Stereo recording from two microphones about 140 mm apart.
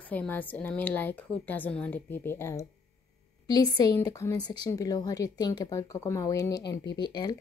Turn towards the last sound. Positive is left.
turn(degrees=30)  # may be behind; listen again after turning